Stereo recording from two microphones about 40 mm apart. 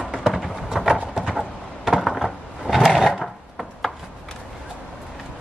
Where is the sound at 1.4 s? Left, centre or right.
Centre.